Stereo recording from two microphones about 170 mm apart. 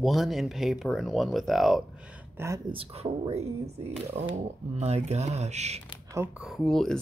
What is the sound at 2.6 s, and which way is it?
Speech, 35° right (ahead or behind).